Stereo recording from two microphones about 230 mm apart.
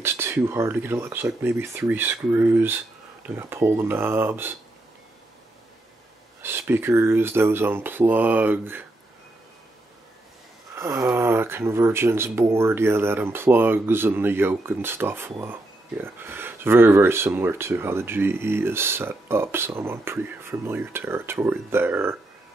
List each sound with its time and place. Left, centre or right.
0.0 s speech: centre
6.4 s speech: centre
10.8 s speech: centre